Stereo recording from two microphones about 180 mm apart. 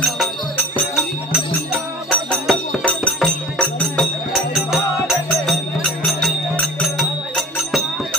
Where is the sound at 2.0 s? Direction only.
5° left (ahead or behind).